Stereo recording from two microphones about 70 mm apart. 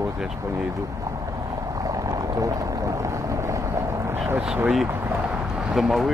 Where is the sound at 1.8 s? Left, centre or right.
Right.